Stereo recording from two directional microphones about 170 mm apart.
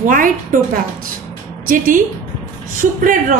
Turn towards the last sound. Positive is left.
turn(degrees=-50)  # may be behind; listen again after turning